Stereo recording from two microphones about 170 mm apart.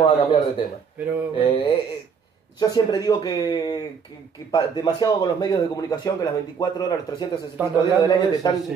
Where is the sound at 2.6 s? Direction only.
20° left (ahead or behind).